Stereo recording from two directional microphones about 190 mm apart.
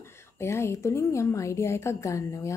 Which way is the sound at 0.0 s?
15° left (ahead or behind).